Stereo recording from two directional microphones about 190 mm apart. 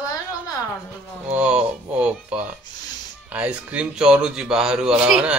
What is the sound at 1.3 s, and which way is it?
Speech, 5° right (ahead or behind).